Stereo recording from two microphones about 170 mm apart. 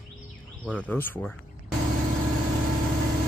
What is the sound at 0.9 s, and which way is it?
Speech, 10° left (ahead or behind).